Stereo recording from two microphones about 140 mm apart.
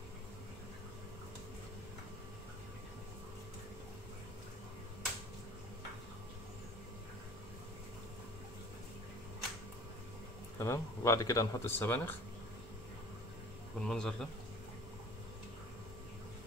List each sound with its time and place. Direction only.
10.6 s speech: 20° left (ahead or behind)
13.7 s a man's voice: 5° left (ahead or behind)